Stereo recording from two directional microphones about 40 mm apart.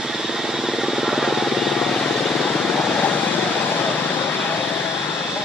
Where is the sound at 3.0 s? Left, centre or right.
Left.